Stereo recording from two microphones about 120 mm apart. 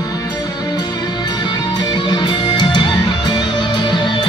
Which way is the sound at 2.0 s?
40° left (ahead or behind).